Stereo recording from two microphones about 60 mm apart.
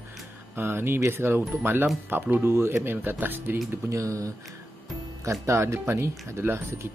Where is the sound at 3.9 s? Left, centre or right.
Right.